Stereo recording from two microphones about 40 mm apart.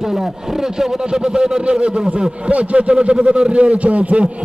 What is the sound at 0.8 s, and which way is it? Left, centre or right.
A man's voice, centre.